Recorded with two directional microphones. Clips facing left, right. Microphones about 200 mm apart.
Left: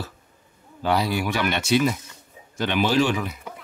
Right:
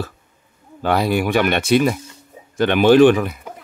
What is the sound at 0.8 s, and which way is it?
Speech, 55° right (ahead or behind).